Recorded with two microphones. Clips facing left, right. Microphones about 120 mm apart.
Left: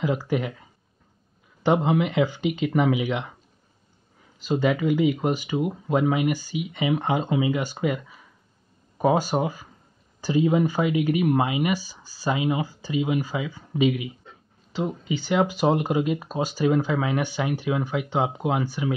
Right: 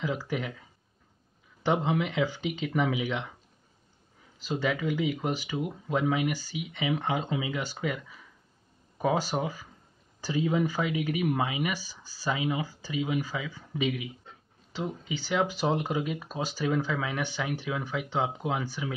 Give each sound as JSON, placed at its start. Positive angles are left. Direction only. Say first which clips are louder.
{"t": 0.0, "sound": "speech", "louder": "left 7 dB", "side_deg": 55}
{"t": 1.6, "sound": "speech", "louder": "left 6 dB", "side_deg": 65}
{"t": 4.4, "sound": "speech", "louder": "left 7 dB", "side_deg": 50}
{"t": 15.1, "sound": "speech", "louder": "left 5 dB", "side_deg": 50}
{"t": 17.9, "sound": "speech", "louder": "left 5 dB", "side_deg": 65}